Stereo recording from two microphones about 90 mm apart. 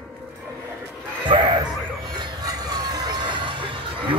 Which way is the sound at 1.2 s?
60° right (ahead or behind).